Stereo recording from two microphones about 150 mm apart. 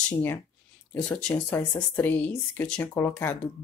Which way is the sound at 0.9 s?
5° left (ahead or behind).